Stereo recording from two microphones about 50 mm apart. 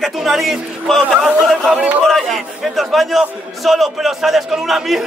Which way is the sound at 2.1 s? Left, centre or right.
Centre.